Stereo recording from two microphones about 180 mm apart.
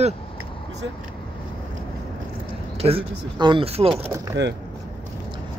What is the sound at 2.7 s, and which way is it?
Speech, 30° right (ahead or behind).